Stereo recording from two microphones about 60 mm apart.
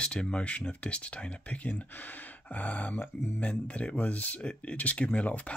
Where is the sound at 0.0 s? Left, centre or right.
Centre.